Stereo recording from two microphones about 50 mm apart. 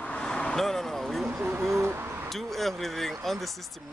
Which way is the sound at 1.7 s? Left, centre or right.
Right.